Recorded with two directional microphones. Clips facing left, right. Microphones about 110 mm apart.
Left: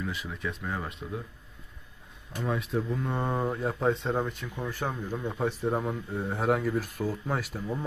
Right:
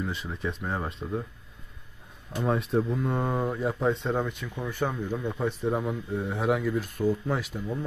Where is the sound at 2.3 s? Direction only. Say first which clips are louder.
Right 4 dB; 30° right (ahead or behind).